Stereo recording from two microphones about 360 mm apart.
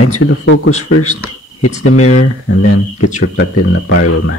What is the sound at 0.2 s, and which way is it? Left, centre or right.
Speech, left.